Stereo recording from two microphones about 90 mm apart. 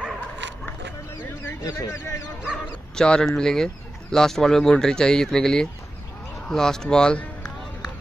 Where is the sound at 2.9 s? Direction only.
10° left (ahead or behind).